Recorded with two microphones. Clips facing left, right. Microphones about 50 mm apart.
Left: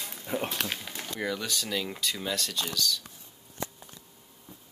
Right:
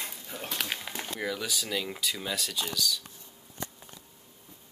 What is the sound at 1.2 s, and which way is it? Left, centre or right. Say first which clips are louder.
Speech: left 2 dB; centre.